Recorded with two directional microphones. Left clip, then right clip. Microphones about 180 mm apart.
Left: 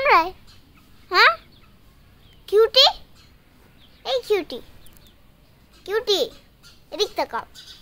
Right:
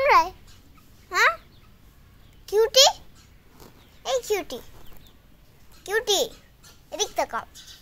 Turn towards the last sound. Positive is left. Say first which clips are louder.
# left 2 dB
turn(degrees=0)  # may be behind; listen again after turning